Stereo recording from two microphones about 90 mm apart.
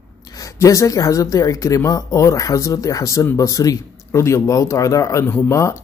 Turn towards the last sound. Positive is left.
turn(degrees=30)  # may be behind; listen again after turning